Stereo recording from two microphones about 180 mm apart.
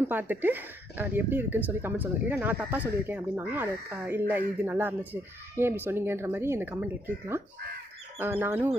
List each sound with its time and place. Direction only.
0.1 s speech: 10° right (ahead or behind)